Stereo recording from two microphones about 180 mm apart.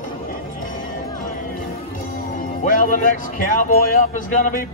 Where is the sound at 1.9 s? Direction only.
50° left (ahead or behind).